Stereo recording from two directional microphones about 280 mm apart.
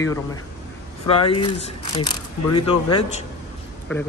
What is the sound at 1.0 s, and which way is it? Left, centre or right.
Speech, centre.